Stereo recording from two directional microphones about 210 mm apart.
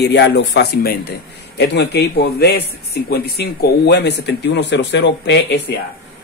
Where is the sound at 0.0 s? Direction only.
55° left (ahead or behind).